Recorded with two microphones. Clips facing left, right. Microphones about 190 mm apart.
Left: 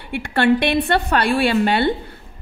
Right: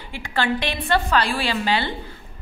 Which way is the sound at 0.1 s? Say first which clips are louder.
Left 7 dB; 60° left (ahead or behind).